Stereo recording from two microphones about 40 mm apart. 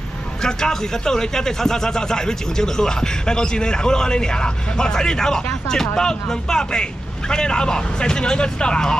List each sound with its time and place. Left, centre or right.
0.4 s speech: centre